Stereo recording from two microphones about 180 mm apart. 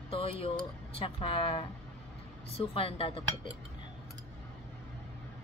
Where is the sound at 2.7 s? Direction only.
30° left (ahead or behind).